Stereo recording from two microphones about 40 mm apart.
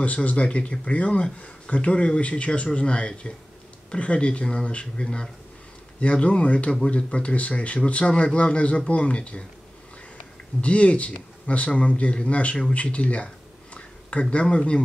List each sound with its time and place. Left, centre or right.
0.0 s a man's voice: left; by 5.3 s centre
5.9 s speech: left
10.6 s speech: left
14.3 s speech: left